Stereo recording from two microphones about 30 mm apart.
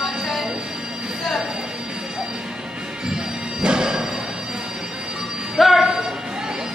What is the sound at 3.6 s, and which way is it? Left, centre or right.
Music, right.